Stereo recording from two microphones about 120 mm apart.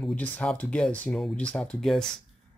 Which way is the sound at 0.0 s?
10° left (ahead or behind).